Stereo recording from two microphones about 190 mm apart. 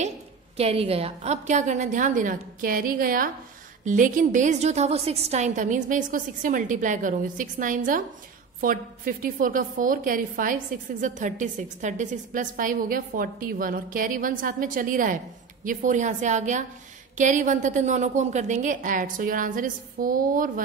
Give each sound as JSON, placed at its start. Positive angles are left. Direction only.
{"t": 0.6, "sound": "a woman's voice", "side_deg": -30}